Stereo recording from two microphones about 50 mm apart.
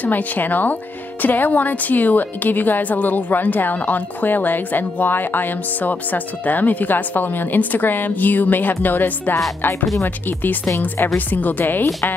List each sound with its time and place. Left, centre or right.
0.0 s speech: left